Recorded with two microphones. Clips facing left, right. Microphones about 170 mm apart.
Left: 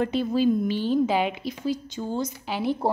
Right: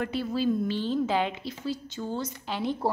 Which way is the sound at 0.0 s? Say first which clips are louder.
Left 5 dB; 20° left (ahead or behind).